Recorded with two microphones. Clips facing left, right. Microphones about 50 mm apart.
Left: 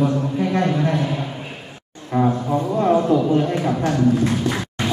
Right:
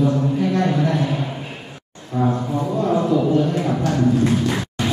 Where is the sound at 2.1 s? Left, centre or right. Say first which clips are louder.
Left 2 dB; left.